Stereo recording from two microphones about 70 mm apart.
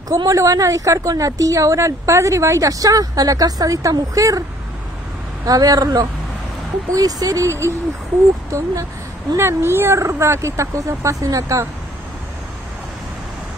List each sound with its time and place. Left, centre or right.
0.2 s speech: right
7.4 s speech: right
9.4 s speech: right